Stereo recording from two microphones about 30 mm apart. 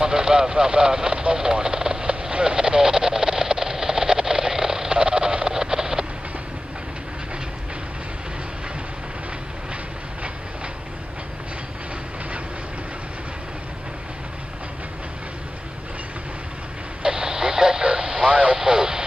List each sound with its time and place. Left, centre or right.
0.0 s speech: right
1.2 s vehicle: right
17.0 s radio: right
18.3 s vehicle: right
18.7 s radio: right